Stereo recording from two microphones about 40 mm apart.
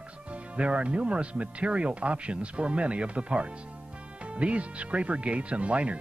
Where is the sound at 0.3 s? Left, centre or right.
Right.